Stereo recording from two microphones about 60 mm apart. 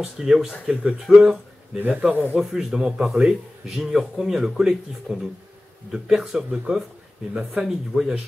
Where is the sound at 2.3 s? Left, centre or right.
Centre.